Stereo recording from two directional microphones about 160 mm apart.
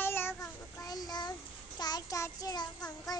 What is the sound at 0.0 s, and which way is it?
Child singing, 15° left (ahead or behind).